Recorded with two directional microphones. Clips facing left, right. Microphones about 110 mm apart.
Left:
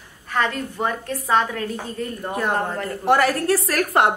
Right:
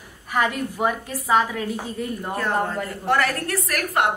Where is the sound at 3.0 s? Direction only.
25° left (ahead or behind).